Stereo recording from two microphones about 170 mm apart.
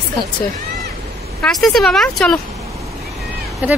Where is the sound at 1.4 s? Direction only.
Centre (ahead or behind).